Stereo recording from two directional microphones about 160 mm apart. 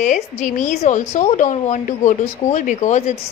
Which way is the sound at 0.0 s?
50° left (ahead or behind).